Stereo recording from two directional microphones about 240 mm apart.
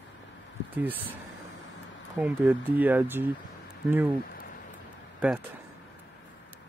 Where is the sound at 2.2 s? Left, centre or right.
Centre.